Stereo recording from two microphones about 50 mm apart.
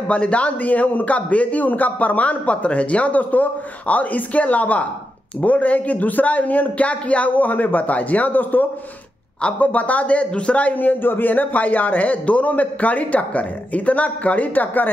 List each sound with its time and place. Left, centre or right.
0.1 s a man's voice: left
10.7 s a man's voice: left